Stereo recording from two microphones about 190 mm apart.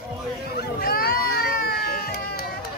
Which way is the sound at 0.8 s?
55° left (ahead or behind).